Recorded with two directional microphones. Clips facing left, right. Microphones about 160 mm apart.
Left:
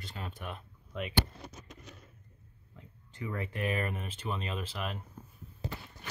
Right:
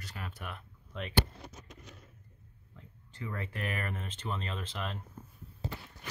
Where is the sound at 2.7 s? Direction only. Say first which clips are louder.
Even; 15° left (ahead or behind).